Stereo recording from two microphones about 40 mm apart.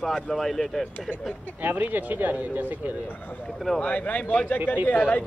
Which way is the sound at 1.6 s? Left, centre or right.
Right.